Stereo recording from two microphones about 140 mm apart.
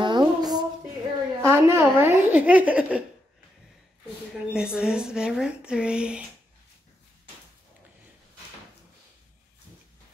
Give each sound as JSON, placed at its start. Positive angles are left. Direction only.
{"t": 0.0, "sound": "a sound", "side_deg": -30}
{"t": 1.4, "sound": "speech", "side_deg": -15}
{"t": 4.5, "sound": "speech", "side_deg": -5}